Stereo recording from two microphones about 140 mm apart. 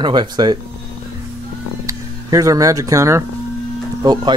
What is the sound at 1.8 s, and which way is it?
Speech, 25° right (ahead or behind).